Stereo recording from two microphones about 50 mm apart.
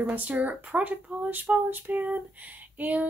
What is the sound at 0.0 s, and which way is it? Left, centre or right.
Speech, right.